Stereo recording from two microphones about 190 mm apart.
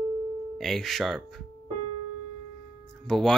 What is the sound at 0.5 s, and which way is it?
Speech, centre (ahead or behind).